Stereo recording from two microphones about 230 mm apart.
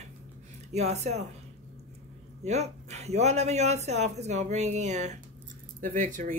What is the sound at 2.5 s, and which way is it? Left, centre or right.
Speech, right.